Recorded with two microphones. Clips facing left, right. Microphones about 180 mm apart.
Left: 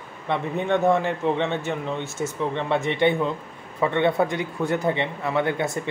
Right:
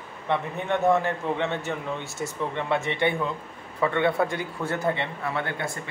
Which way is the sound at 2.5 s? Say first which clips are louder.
Left 1 dB; 20° left (ahead or behind).